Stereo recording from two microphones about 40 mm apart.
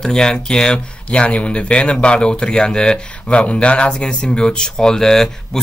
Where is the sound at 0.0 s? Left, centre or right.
Centre.